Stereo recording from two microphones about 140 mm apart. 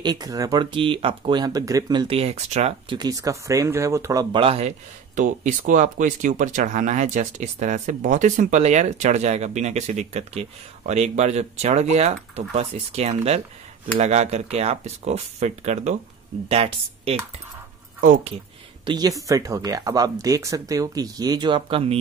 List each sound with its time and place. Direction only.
0.0 s speech: 30° right (ahead or behind); by 2.7 s 50° right (ahead or behind)
2.9 s speech: 30° right (ahead or behind); by 4.7 s 45° right (ahead or behind)
5.1 s speech: 70° right (ahead or behind); by 17.2 s 45° right (ahead or behind)
18.9 s speech: 30° right (ahead or behind)